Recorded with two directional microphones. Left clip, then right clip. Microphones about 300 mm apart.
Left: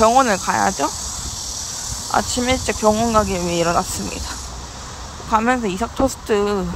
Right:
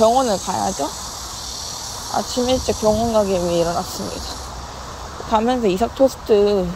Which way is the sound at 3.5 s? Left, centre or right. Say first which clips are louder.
Left 1 dB; left.